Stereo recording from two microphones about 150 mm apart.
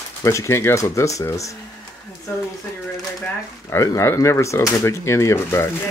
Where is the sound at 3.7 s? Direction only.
20° left (ahead or behind).